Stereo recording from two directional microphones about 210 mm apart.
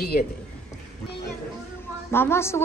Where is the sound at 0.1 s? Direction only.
45° left (ahead or behind).